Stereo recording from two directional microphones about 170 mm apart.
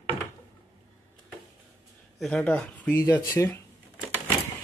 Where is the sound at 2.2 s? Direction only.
5° left (ahead or behind).